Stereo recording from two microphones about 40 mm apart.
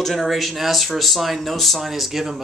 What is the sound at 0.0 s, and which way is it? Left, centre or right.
Speech, centre.